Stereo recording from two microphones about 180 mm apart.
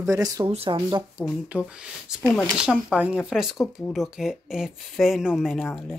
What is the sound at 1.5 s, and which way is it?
Speech, 10° right (ahead or behind).